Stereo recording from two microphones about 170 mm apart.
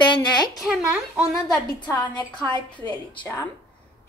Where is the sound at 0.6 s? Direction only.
5° right (ahead or behind).